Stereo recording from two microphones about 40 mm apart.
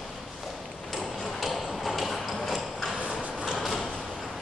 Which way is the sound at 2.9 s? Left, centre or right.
Centre.